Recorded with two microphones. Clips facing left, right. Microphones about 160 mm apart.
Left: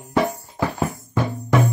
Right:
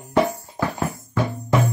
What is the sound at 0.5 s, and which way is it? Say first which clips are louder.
Music: left 2 dB; 20° left (ahead or behind).